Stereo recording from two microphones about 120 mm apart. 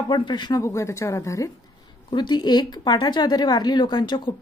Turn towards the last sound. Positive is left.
turn(degrees=40)  # may be behind; listen again after turning